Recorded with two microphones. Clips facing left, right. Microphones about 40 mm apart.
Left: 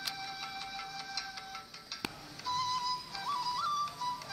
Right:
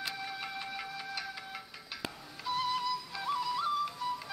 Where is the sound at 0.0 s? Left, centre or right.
Right.